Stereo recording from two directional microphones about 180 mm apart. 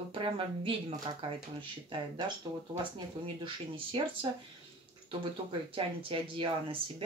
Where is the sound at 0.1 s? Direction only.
30° right (ahead or behind).